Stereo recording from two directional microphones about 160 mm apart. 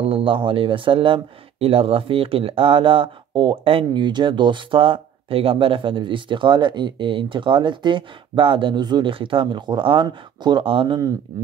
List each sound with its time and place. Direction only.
0.0 s speech: 35° right (ahead or behind)